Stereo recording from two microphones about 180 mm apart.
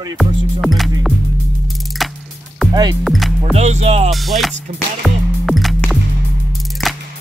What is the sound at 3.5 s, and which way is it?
Music, 35° right (ahead or behind).